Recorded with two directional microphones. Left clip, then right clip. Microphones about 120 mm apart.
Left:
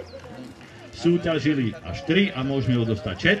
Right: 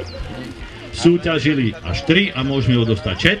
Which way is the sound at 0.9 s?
20° left (ahead or behind).